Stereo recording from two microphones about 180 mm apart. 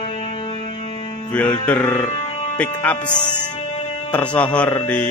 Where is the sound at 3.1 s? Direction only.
25° left (ahead or behind).